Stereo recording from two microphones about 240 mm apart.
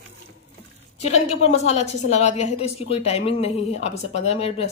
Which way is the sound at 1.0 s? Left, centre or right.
Left.